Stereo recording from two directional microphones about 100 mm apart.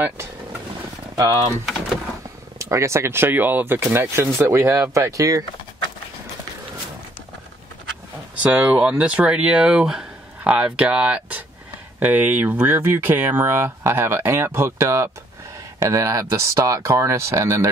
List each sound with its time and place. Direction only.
1.1 s speech: 35° right (ahead or behind)
2.6 s speech: 30° right (ahead or behind)
8.4 s speech: 15° right (ahead or behind); by 17.6 s 30° right (ahead or behind)